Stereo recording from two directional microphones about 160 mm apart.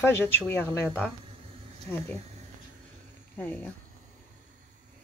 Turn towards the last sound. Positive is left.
turn(degrees=10)  # may be behind; listen again after turning